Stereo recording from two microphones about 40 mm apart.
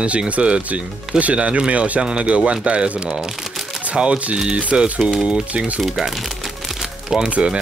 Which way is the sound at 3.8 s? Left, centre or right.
Right.